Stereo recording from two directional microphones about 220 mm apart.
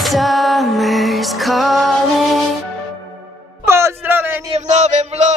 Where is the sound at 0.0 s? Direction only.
Centre (ahead or behind).